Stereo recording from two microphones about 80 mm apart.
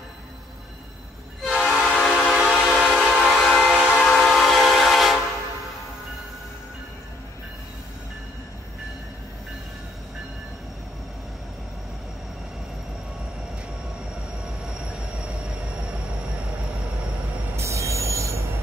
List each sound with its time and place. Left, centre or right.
1.4 s train horn: centre
1.8 s train: centre
17.6 s train: right